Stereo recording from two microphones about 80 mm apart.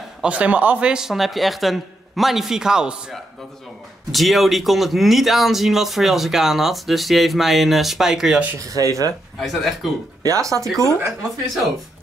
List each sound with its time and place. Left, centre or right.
0.2 s speech: centre
8.5 s speech: right
9.4 s speech: centre
10.2 s speech: right
11.1 s speech: centre